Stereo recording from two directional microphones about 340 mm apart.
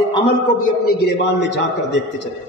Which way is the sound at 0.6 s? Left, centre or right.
Left.